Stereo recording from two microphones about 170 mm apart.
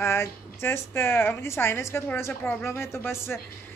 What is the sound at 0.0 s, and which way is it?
Speech, 15° left (ahead or behind).